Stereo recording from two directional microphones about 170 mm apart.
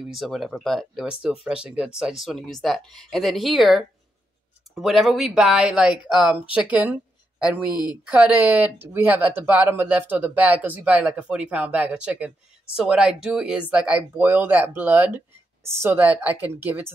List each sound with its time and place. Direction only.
0.0 s speech: centre (ahead or behind)
7.7 s a woman's voice: 25° left (ahead or behind)
8.1 s speech: 10° right (ahead or behind)